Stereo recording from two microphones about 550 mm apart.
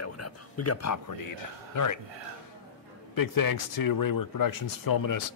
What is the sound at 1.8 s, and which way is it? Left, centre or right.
Speech, left.